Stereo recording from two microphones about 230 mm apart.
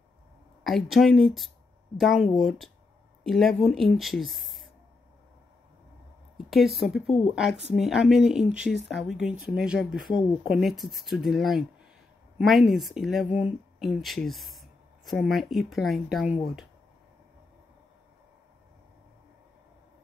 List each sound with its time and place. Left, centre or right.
0.7 s speech: centre
6.3 s speech: centre